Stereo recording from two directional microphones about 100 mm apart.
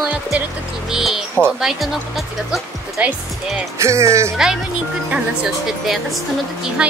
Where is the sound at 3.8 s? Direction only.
30° right (ahead or behind).